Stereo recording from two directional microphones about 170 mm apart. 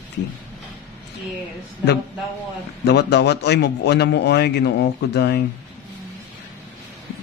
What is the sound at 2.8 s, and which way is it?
A man's voice, 80° left.